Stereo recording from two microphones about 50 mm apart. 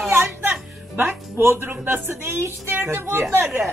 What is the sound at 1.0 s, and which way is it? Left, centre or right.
Speech, right.